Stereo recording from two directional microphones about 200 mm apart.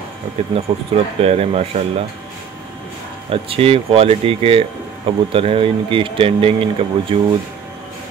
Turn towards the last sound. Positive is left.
turn(degrees=-30)  # may be behind; listen again after turning